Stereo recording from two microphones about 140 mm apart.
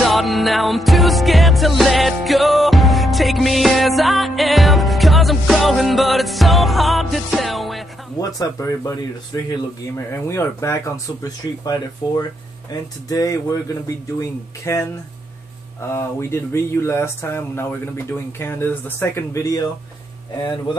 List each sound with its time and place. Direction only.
0.0 s music: centre (ahead or behind)
8.2 s speech: 25° left (ahead or behind)
14.6 s speech: 20° left (ahead or behind)
15.9 s speech: 20° left (ahead or behind)